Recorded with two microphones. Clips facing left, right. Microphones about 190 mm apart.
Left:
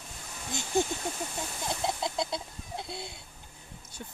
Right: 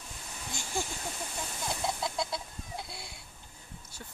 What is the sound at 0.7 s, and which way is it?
Speech, 20° left (ahead or behind).